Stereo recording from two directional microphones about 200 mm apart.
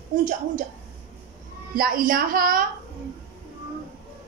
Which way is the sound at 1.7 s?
45° right (ahead or behind).